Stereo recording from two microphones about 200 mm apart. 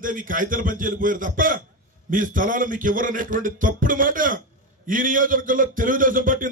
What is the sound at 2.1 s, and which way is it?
Music, 40° right (ahead or behind).